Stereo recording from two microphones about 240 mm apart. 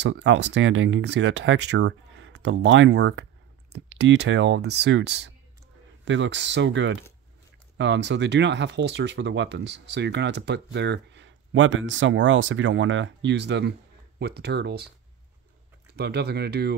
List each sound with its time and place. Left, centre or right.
0.0 s speech: right
16.0 s speech: right